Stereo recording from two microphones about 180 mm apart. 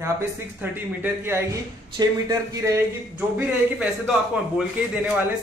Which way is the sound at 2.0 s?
20° right (ahead or behind).